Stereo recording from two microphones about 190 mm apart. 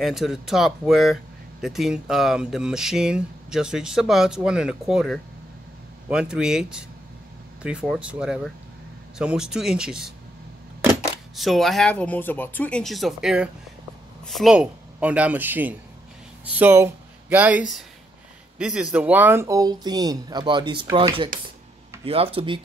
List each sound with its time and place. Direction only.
0.0 s speech: centre (ahead or behind)
11.3 s speech: centre (ahead or behind); by 22.6 s 30° right (ahead or behind)